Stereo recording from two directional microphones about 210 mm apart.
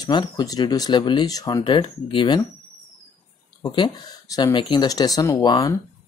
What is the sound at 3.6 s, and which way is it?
Speech, 20° left (ahead or behind).